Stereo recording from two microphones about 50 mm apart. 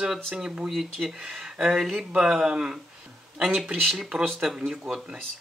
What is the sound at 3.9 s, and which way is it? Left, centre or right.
Speech, centre.